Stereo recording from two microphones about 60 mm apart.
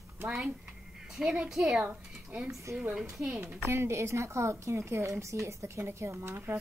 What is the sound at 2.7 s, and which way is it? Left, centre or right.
A woman's voice, right.